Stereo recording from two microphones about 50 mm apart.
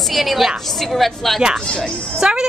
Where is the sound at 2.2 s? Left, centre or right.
Centre.